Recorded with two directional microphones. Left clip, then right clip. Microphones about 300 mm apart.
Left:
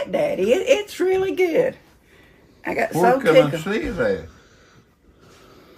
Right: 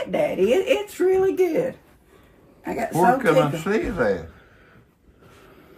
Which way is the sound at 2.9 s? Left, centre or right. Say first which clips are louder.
Left 3 dB; centre.